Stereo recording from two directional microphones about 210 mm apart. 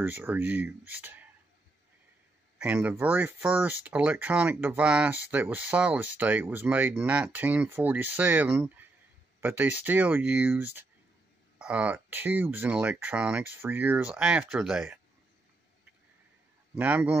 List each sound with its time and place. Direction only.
0.0 s speech: 10° right (ahead or behind)
2.6 s speech: 5° right (ahead or behind)
16.7 s speech: 5° right (ahead or behind)